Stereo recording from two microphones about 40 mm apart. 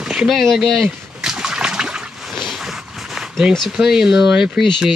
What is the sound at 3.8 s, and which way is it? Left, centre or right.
Speech, centre.